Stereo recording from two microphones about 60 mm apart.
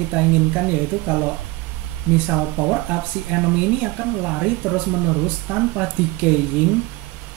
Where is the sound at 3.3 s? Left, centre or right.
Right.